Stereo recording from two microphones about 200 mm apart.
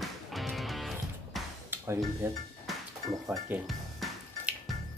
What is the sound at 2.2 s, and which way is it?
Speech, 10° right (ahead or behind).